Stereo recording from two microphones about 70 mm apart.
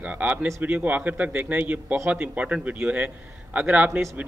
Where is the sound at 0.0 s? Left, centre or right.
Right.